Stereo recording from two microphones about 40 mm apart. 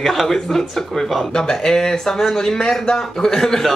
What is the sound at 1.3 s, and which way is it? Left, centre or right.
Speech, centre.